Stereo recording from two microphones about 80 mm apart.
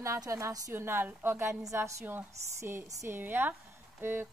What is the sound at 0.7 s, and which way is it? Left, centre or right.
A woman's voice, right.